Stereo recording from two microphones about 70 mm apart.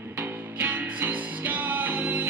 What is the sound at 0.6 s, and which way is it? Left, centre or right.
Music, right.